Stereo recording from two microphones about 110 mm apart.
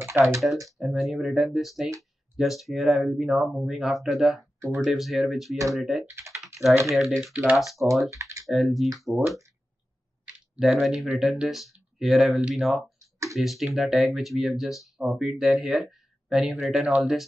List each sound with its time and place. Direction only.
0.2 s speech: 20° right (ahead or behind)
0.7 s speech: centre (ahead or behind)
6.0 s speech: 25° right (ahead or behind)
7.3 s speech: 15° right (ahead or behind)
7.8 s speech: centre (ahead or behind)
8.1 s speech: 30° right (ahead or behind)
8.5 s speech: centre (ahead or behind)
10.6 s speech: centre (ahead or behind)